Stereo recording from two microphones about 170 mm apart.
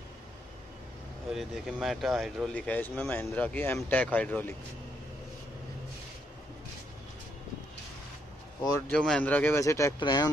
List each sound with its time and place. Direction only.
1.3 s speech: centre (ahead or behind)
8.6 s speech: 20° left (ahead or behind)
8.9 s speech: 5° left (ahead or behind); by 10.3 s 25° left (ahead or behind)